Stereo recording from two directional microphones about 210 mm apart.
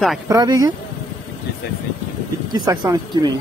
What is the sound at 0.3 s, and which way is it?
Speech, 15° right (ahead or behind).